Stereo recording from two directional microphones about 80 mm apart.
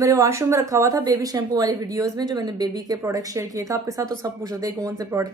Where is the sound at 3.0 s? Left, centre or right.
Right.